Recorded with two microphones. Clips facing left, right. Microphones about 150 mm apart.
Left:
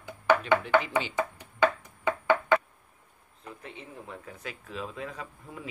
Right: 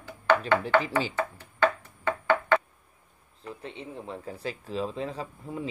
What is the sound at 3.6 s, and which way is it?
Speech, 30° right (ahead or behind).